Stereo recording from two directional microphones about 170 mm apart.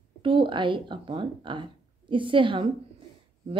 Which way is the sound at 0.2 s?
30° right (ahead or behind).